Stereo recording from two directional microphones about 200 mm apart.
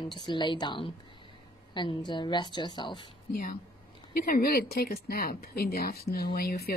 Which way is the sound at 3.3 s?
40° left (ahead or behind).